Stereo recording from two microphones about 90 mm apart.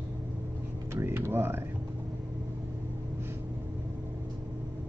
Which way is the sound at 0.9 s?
25° right (ahead or behind).